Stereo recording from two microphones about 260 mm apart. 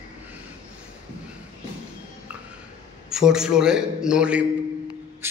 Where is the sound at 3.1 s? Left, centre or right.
Centre.